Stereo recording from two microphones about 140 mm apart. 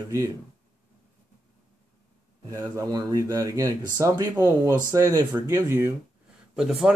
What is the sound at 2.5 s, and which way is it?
Speech, 20° right (ahead or behind).